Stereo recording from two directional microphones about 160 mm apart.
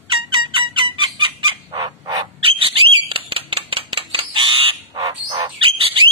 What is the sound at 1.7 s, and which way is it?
Bird, 30° right (ahead or behind).